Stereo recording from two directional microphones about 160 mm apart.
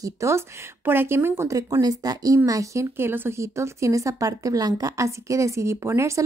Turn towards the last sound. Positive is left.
turn(degrees=-15)  # may be behind; listen again after turning